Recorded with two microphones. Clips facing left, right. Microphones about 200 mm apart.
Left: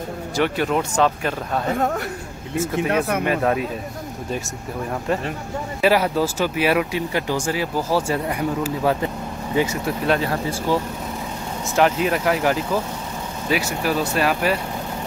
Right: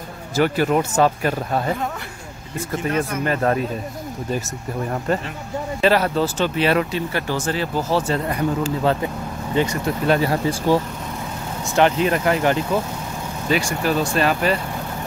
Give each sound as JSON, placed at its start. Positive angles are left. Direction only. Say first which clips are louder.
{"t": 0.4, "sound": "speech", "louder": "right 3 dB", "side_deg": -5}
{"t": 2.7, "sound": "speech", "louder": "even", "side_deg": 65}
{"t": 3.3, "sound": "speech", "louder": "even", "side_deg": 5}
{"t": 5.8, "sound": "speech", "louder": "even", "side_deg": 10}
{"t": 10.7, "sound": "speech", "louder": "right 3 dB", "side_deg": -15}
{"t": 11.7, "sound": "speech", "louder": "right 1 dB", "side_deg": 0}